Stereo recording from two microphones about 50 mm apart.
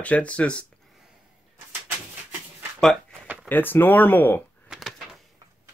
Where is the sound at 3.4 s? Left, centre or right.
Left.